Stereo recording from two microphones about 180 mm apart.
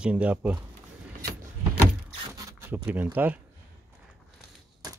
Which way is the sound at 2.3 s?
15° right (ahead or behind).